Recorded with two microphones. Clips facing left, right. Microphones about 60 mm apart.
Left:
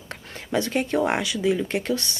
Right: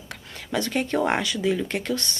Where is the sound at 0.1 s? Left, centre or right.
Left.